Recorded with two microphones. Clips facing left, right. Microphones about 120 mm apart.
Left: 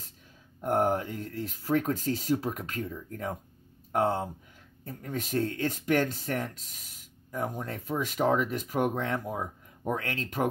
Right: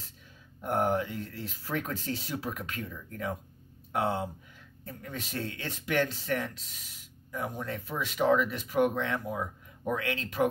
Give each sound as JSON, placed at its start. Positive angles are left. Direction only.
{"t": 0.6, "sound": "speech", "side_deg": 40}